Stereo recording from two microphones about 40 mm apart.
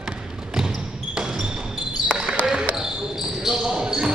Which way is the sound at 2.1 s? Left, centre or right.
Centre.